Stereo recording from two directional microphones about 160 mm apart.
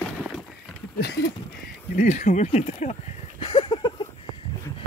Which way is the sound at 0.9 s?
90° left.